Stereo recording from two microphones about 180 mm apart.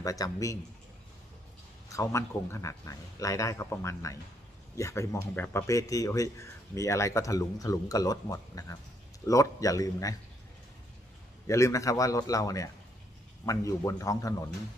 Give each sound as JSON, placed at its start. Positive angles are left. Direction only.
{"t": 0.0, "sound": "a man's voice", "side_deg": 20}
{"t": 1.9, "sound": "a man's voice", "side_deg": 15}
{"t": 11.4, "sound": "a man's voice", "side_deg": 15}